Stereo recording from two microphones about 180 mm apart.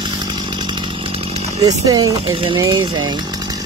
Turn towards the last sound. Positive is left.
turn(degrees=-20)  # may be behind; listen again after turning